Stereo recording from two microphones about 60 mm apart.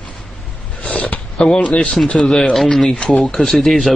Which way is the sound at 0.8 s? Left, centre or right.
Centre.